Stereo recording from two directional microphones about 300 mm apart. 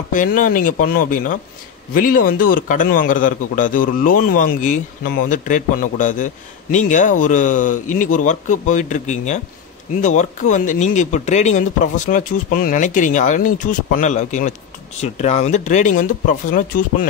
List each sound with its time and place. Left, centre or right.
0.1 s a man's voice: left